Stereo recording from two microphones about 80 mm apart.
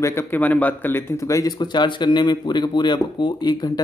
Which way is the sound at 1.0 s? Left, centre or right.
Left.